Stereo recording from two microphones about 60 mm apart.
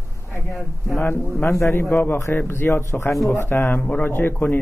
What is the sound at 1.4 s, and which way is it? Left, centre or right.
Speech, left.